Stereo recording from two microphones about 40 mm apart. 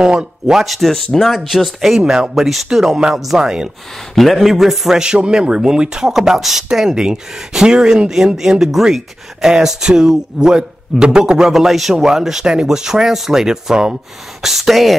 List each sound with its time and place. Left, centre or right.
0.0 s speech: right
0.5 s a man's voice: centre
1.5 s a man's voice: centre
2.0 s speech: centre
4.1 s a man's voice: centre
5.0 s speech: centre
11.5 s a man's voice: centre